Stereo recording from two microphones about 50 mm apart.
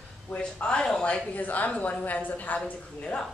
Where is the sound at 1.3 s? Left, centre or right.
Left.